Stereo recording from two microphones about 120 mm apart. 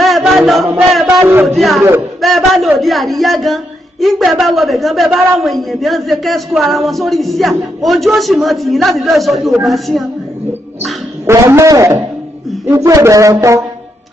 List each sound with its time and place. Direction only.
0.0 s chant: centre (ahead or behind)
1.2 s speech: 15° right (ahead or behind)
1.5 s a woman's voice: centre (ahead or behind)
11.2 s a man's voice: 25° right (ahead or behind)